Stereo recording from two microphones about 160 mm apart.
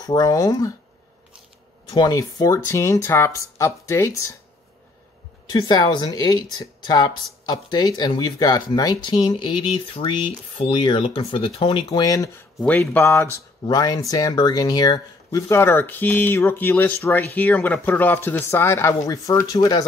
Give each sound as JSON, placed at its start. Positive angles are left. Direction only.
{"t": 0.0, "sound": "speech", "side_deg": 25}
{"t": 1.9, "sound": "speech", "side_deg": 25}
{"t": 5.5, "sound": "speech", "side_deg": 25}
{"t": 12.6, "sound": "speech", "side_deg": 10}